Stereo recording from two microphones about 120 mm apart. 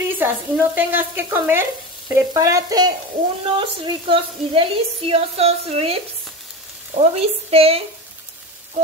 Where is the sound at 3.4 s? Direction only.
45° right (ahead or behind).